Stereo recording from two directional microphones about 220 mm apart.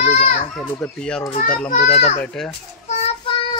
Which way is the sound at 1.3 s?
35° left (ahead or behind).